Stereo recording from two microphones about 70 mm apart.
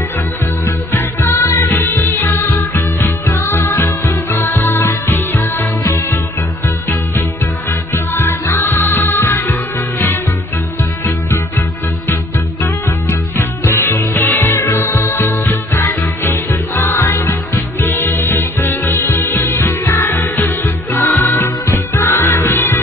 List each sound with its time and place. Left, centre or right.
0.7 s music: left
7.9 s music: left
12.6 s music: left